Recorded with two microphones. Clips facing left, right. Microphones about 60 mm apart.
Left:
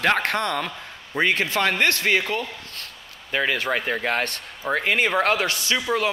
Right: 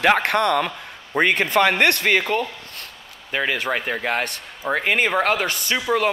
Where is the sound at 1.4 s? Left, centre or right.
Centre.